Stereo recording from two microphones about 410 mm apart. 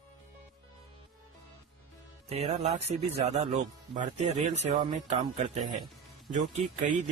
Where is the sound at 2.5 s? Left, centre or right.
Centre.